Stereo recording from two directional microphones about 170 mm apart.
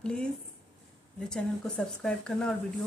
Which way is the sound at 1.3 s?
5° left (ahead or behind).